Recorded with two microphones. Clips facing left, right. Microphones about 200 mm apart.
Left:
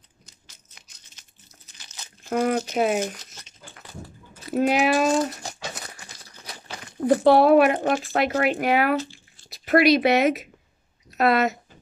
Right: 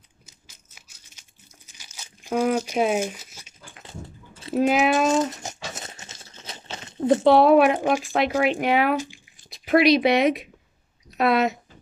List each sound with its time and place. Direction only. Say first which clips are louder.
0.3 s a sound: right 1 dB; 10° right (ahead or behind)
1.7 s crumpling: even; 10° right (ahead or behind)
2.5 s speech: right 1 dB; 10° right (ahead or behind)
2.9 s crumpling: even; 10° right (ahead or behind)
3.7 s dog: right 1 dB; 25° right (ahead or behind)
4.6 s speech: right 1 dB; centre (ahead or behind)
5.0 s crumpling: even; 20° right (ahead or behind)
7.2 s speech: even; centre (ahead or behind)
7.8 s speech: right 1 dB; 15° right (ahead or behind)
8.4 s speech: right 1 dB; centre (ahead or behind)
8.9 s squish: left 1 dB; 15° right (ahead or behind)
9.5 s speech: even; centre (ahead or behind)